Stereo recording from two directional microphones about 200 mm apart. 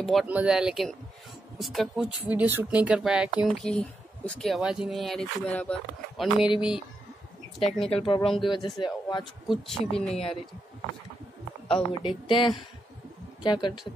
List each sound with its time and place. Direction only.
0.0 s speech: centre (ahead or behind)
7.8 s a woman's voice: 25° left (ahead or behind)
9.2 s speech: centre (ahead or behind)
11.7 s a woman's voice: 25° left (ahead or behind)